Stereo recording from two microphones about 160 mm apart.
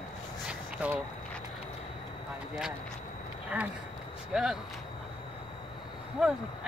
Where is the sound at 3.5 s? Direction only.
10° right (ahead or behind).